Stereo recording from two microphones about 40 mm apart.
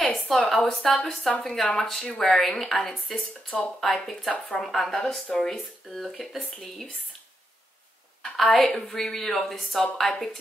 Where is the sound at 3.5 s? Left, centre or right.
Left.